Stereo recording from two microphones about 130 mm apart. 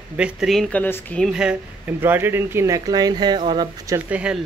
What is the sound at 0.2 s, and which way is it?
Speech, centre (ahead or behind).